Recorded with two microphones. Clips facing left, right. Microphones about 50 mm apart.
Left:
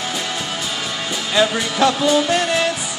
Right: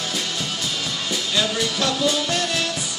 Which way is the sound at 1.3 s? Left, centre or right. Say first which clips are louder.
Left 6 dB; left.